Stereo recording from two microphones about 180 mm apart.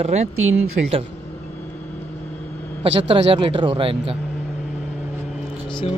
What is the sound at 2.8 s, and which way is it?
Speech, 30° right (ahead or behind).